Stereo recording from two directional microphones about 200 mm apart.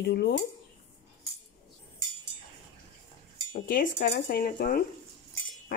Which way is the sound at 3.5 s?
45° left (ahead or behind).